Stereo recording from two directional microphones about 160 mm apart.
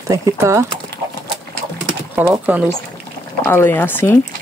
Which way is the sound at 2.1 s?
10° right (ahead or behind).